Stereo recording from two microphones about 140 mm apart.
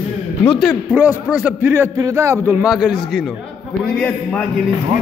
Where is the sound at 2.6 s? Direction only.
5° right (ahead or behind).